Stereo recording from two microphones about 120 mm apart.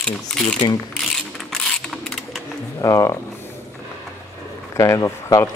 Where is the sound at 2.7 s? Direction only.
30° left (ahead or behind).